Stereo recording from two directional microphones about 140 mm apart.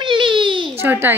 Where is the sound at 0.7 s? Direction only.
15° right (ahead or behind).